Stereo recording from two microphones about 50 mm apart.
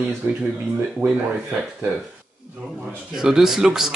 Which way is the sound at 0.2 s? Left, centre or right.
Right.